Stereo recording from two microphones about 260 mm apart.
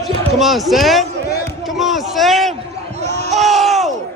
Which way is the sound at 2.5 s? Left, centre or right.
Right.